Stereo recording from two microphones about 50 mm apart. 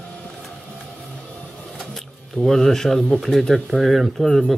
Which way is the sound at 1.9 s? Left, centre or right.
Centre.